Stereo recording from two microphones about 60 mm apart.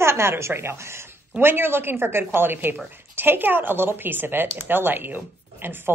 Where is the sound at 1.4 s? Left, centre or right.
Right.